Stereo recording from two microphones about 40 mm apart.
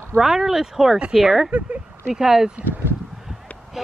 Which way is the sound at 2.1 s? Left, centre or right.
Centre.